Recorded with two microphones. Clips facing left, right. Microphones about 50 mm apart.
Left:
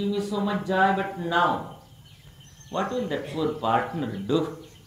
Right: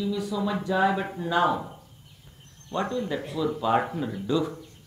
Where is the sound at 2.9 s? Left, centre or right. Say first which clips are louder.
Left 1 dB; centre.